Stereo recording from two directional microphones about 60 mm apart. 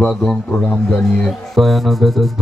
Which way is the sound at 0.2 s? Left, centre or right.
Centre.